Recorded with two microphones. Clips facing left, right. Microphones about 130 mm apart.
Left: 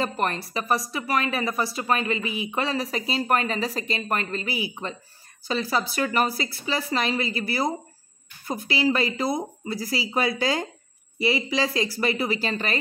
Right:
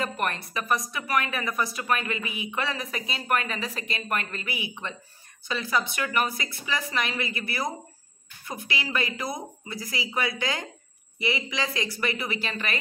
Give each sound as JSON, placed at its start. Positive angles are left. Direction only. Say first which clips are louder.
{"t": 0.0, "sound": "a woman's voice", "louder": "left 3 dB", "side_deg": 30}